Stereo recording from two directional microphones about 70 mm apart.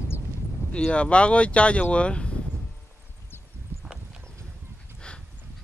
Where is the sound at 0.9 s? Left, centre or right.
Centre.